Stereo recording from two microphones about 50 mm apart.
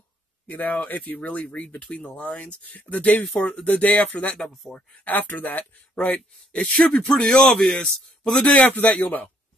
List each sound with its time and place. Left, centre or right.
0.5 s speech: left
4.4 s a man's voice: centre
5.0 s speech: left
6.5 s a man's voice: centre
8.6 s speech: left